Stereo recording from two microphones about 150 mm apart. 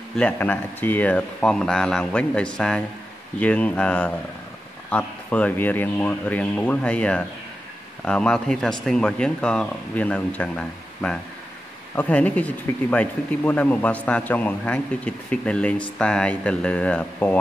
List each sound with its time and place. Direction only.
0.1 s speech: 10° left (ahead or behind)